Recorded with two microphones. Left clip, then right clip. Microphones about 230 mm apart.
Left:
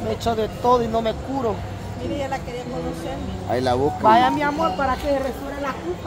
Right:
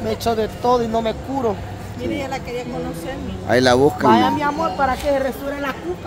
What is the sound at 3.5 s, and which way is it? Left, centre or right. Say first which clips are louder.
Speech: right 7 dB; right.